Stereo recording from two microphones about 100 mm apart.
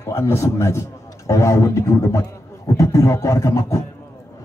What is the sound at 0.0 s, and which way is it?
A man's voice, 25° left (ahead or behind).